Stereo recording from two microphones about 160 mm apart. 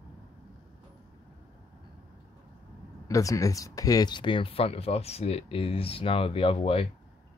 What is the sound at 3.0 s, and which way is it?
Speech, 20° left (ahead or behind).